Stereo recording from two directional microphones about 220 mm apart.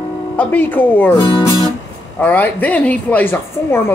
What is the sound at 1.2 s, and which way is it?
Music, 20° left (ahead or behind).